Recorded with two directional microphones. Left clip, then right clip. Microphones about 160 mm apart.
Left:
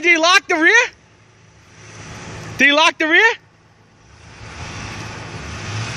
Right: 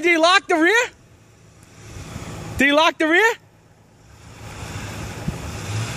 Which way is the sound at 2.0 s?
15° right (ahead or behind).